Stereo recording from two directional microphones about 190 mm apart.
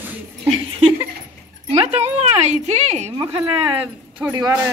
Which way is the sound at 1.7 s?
35° right (ahead or behind).